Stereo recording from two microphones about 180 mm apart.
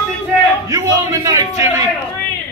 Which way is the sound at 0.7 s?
15° right (ahead or behind).